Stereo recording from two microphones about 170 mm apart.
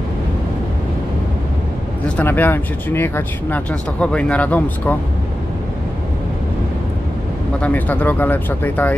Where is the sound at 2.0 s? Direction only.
10° left (ahead or behind).